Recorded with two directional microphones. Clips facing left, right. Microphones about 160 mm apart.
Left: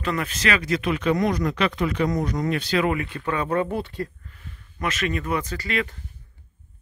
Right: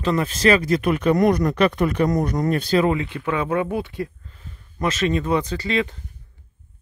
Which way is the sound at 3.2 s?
10° right (ahead or behind).